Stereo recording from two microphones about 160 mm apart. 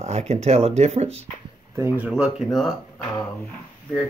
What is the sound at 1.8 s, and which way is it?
Speech, 10° right (ahead or behind).